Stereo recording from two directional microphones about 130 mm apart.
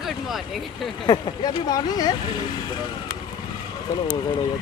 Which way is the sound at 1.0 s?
30° left (ahead or behind).